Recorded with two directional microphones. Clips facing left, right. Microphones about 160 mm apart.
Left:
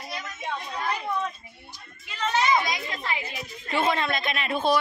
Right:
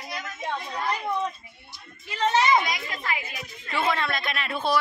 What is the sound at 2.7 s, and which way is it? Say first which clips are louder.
A woman's voice: even; 20° left (ahead or behind).